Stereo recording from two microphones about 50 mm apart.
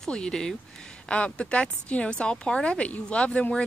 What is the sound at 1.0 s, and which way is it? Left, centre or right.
Speech, left.